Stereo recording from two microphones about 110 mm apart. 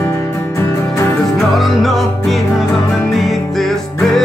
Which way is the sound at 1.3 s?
Centre (ahead or behind).